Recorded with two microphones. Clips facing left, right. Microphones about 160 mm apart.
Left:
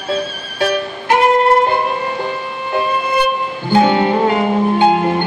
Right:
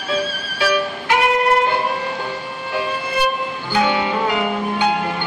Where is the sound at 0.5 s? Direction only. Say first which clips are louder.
Left 2 dB; 45° left (ahead or behind).